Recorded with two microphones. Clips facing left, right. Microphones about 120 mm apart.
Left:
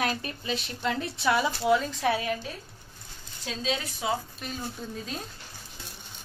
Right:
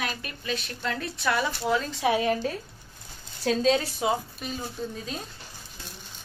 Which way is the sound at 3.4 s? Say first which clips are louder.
Right 9 dB; 45° right (ahead or behind).